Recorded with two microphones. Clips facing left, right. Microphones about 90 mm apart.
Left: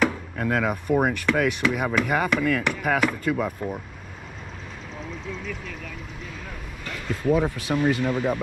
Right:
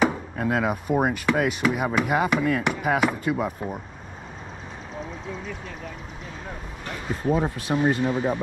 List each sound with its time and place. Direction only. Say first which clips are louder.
0.1 s chopping: even; 15° right (ahead or behind)
1.6 s speech: right 1 dB; 5° right (ahead or behind)
2.0 s chopping: right 1 dB; 5° right (ahead or behind)
2.6 s speech: right 1 dB; 5° right (ahead or behind)
6.8 s speech: left 1 dB; 20° right (ahead or behind)